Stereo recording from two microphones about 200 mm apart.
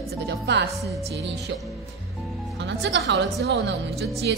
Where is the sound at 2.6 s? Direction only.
60° right (ahead or behind).